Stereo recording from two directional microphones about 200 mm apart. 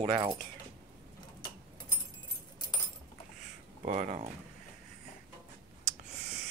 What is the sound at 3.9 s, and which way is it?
Speech, 35° right (ahead or behind).